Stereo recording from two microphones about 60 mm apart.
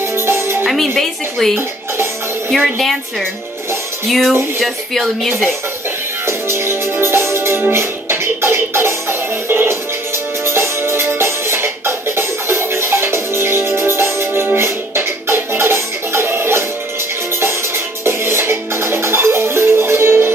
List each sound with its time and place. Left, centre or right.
0.1 s music: right
0.7 s a woman's voice: centre
6.2 s music: right